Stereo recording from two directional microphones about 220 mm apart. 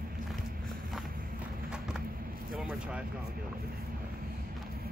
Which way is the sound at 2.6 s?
5° right (ahead or behind).